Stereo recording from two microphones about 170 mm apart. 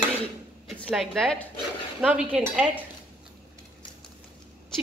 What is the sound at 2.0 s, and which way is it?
Dishes, 10° right (ahead or behind).